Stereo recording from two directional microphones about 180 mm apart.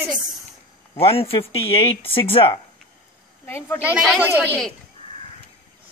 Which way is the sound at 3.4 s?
10° left (ahead or behind).